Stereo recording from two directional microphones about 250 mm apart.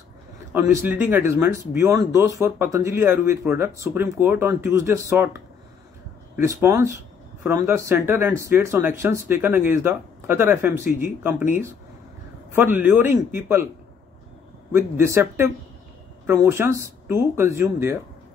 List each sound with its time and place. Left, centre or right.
0.5 s speech: centre
6.3 s speech: centre
14.7 s speech: centre